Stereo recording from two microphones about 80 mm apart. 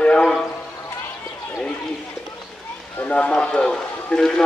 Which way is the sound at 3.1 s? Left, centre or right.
Centre.